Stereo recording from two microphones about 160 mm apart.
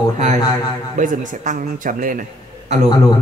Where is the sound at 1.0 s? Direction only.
55° right (ahead or behind).